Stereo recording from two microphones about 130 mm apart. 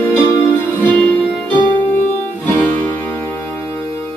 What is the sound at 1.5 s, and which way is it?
Music, 35° right (ahead or behind).